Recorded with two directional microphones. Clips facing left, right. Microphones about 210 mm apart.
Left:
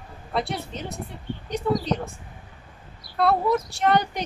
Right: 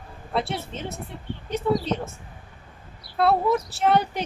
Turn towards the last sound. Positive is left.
turn(degrees=-5)  # may be behind; listen again after turning